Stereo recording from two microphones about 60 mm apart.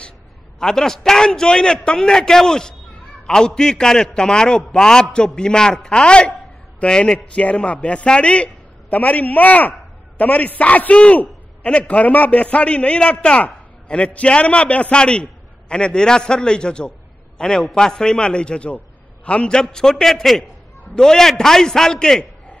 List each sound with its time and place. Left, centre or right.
0.6 s a man's voice: centre